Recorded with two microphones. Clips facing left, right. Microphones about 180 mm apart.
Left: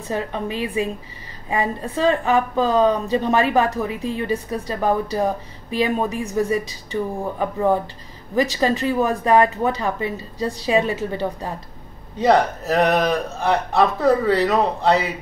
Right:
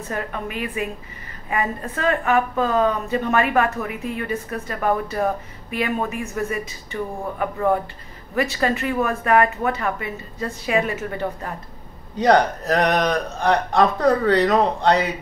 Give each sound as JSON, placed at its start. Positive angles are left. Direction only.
{"t": 0.1, "sound": "a woman's voice", "side_deg": 30}
{"t": 12.2, "sound": "a man's voice", "side_deg": 0}